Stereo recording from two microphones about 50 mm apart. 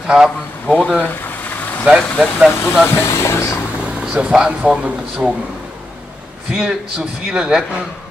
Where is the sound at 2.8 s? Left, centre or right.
Left.